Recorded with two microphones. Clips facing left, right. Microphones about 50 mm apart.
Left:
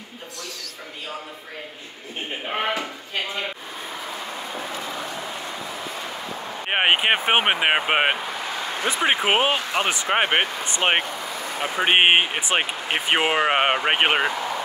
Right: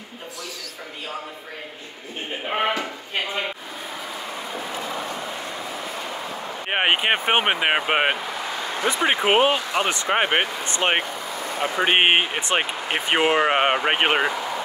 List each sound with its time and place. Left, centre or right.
2.4 s a sound: centre
6.7 s speech: centre
9.6 s speech: left
9.8 s speech: centre
10.8 s speech: left
11.8 s speech: centre